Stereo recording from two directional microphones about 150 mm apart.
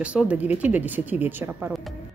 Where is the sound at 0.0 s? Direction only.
10° right (ahead or behind).